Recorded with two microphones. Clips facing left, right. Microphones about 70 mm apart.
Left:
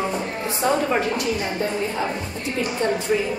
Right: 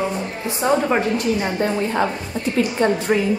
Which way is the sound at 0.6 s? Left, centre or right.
Right.